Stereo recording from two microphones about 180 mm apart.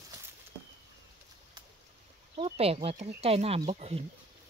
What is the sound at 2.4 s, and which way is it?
Speech, 30° right (ahead or behind).